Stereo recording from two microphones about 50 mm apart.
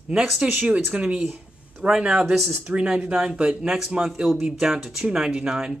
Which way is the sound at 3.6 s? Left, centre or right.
Centre.